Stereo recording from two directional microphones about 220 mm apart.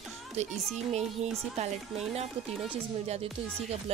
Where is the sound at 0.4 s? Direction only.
30° right (ahead or behind).